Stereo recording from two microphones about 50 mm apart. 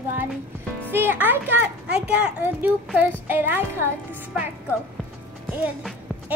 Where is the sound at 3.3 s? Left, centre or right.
Right.